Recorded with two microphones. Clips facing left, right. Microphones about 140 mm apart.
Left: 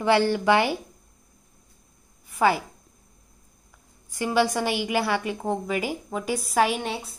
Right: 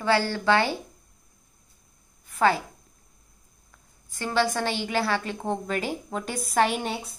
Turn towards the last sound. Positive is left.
turn(degrees=0)  # may be behind; listen again after turning